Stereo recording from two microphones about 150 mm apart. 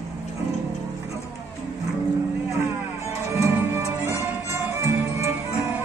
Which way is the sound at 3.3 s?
15° right (ahead or behind).